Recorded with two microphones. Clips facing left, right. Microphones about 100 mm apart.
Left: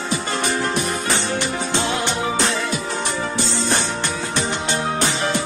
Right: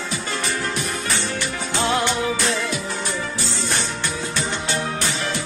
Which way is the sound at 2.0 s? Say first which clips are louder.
Left 1 dB; 25° left (ahead or behind).